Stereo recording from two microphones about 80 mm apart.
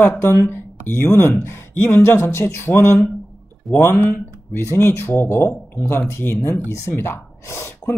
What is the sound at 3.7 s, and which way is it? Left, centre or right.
Speech, left.